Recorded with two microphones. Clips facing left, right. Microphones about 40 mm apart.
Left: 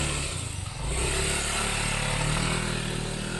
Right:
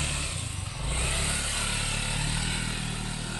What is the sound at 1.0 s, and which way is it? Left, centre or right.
Vehicle, left.